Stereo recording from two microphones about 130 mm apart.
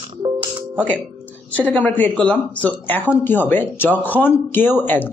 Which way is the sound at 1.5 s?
10° left (ahead or behind).